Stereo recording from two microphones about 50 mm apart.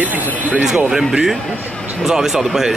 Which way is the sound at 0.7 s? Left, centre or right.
Centre.